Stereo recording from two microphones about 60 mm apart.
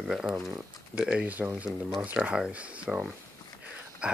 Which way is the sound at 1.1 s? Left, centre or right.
Right.